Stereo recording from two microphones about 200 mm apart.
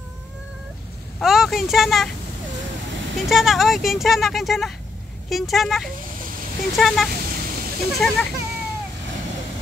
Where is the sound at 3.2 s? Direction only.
Centre (ahead or behind).